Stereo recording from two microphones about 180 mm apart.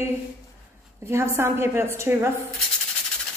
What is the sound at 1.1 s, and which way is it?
A woman's voice, 15° right (ahead or behind).